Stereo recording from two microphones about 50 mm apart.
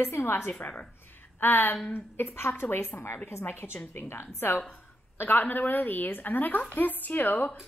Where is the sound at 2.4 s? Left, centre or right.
Left.